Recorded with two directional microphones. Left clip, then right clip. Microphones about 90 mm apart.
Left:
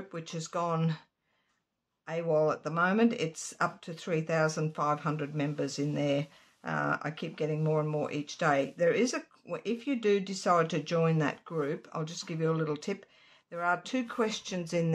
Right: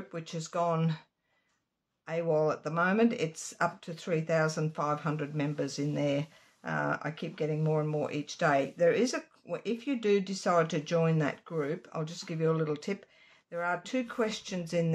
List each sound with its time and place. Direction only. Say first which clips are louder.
0.1 s speech: even; 25° left (ahead or behind)
2.0 s speech: left 1 dB; 15° left (ahead or behind); by 14.9 s 35° left (ahead or behind)